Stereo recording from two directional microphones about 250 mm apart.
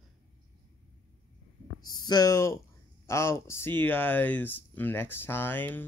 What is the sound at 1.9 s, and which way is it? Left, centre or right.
Speech, centre.